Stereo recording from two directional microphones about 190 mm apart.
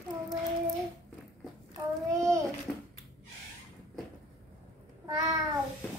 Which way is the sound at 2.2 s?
15° right (ahead or behind).